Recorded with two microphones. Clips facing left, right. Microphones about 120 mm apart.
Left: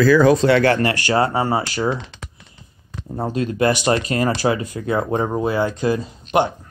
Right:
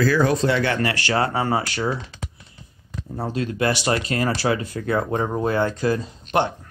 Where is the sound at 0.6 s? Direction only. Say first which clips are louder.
Left 5 dB; 45° left (ahead or behind).